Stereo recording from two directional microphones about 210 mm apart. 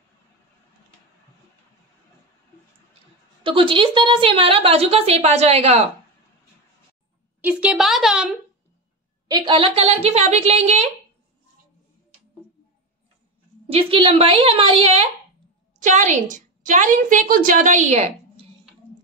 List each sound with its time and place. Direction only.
3.4 s a woman's voice: 25° right (ahead or behind)
7.4 s a woman's voice: 5° right (ahead or behind)
9.3 s a woman's voice: 20° right (ahead or behind)
13.7 s a woman's voice: 25° right (ahead or behind)